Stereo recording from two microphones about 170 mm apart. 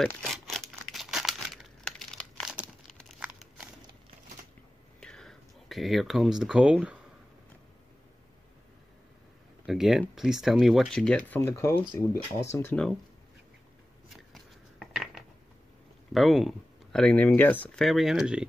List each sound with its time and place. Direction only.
0.0 s crumpling: centre (ahead or behind)
2.5 s crumpling: 5° right (ahead or behind)
5.0 s speech: 5° left (ahead or behind)
9.7 s speech: centre (ahead or behind); by 12.7 s 15° left (ahead or behind)
14.0 s scissors: centre (ahead or behind)
16.1 s speech: centre (ahead or behind)